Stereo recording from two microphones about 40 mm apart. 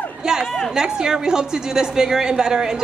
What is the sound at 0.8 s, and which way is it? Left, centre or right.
A woman's voice, centre.